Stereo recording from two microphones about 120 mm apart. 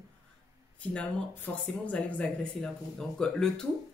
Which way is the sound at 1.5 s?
15° left (ahead or behind).